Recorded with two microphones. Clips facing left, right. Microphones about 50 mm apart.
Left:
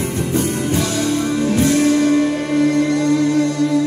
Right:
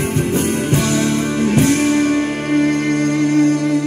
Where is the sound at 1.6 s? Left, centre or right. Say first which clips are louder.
Even; right.